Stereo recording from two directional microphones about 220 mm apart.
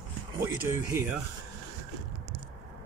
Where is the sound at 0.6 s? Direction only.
10° right (ahead or behind).